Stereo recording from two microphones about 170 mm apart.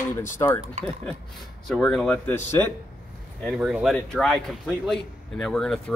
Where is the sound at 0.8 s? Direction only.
40° right (ahead or behind).